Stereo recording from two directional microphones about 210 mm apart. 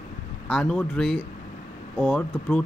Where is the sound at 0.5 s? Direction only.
5° left (ahead or behind).